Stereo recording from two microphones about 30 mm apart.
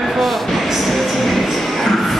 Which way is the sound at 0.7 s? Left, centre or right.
Centre.